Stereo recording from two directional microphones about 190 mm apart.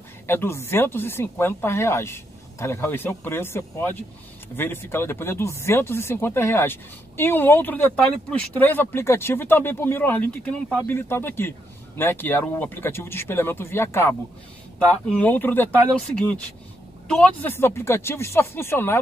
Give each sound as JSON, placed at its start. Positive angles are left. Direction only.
{"t": 0.3, "sound": "speech", "side_deg": 10}